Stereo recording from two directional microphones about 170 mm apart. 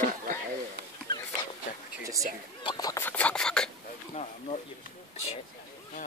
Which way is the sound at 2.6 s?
20° left (ahead or behind).